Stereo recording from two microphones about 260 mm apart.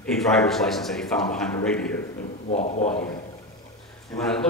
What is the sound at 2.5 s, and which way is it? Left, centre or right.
Speech, left.